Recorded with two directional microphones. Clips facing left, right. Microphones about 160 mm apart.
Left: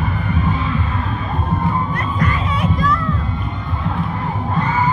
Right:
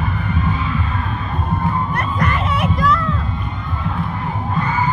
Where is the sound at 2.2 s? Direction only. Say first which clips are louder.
Right 1 dB; 80° right.